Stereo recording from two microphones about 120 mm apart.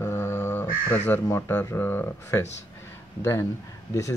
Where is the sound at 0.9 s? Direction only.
15° left (ahead or behind).